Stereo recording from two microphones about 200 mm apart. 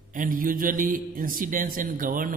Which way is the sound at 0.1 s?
45° right (ahead or behind).